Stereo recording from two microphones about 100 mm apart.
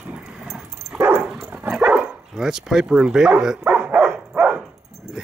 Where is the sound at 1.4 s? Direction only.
20° right (ahead or behind).